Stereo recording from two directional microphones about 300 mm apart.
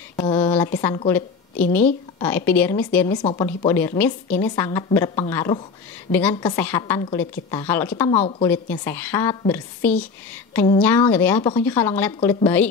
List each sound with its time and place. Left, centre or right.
0.2 s a sound: centre
0.7 s a woman's voice: centre
8.1 s a woman's voice: centre
8.5 s a woman's voice: centre